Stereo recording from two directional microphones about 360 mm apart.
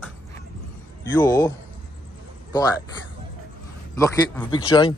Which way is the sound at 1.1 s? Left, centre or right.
Centre.